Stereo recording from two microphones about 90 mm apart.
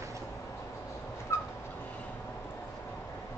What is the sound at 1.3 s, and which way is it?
Dog, 35° left (ahead or behind).